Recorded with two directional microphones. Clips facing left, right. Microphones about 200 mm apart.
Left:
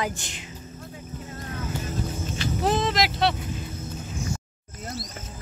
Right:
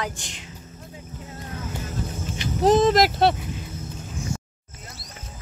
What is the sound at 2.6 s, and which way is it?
Speech, 45° right (ahead or behind).